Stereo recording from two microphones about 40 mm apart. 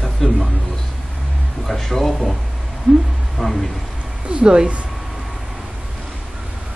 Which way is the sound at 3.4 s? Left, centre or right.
Centre.